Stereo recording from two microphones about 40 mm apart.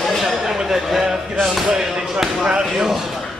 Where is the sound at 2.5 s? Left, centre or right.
Centre.